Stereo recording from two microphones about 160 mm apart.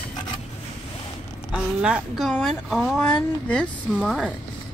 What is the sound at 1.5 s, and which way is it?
Speech, 5° right (ahead or behind).